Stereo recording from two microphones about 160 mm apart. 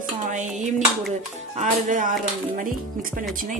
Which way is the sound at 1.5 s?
50° right (ahead or behind).